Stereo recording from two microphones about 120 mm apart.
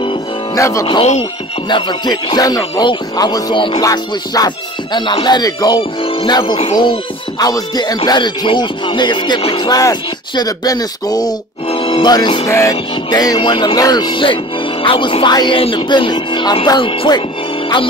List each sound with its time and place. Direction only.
0.6 s music: 25° left (ahead or behind)
1.7 s speech: 40° left (ahead or behind)
3.5 s music: 45° left (ahead or behind)
3.8 s speech: 30° left (ahead or behind)
5.8 s speech: 45° left (ahead or behind)
11.7 s music: 45° left (ahead or behind)
12.1 s speech: 40° left (ahead or behind)
12.4 s music: 25° left (ahead or behind)
13.4 s speech: 45° left (ahead or behind)